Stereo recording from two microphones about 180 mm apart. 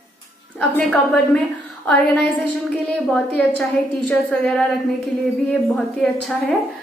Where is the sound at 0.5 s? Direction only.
5° left (ahead or behind).